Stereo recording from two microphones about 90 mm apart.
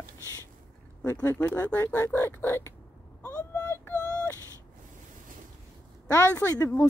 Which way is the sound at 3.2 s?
40° left (ahead or behind).